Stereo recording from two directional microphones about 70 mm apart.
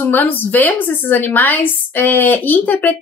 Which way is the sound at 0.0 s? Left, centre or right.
Left.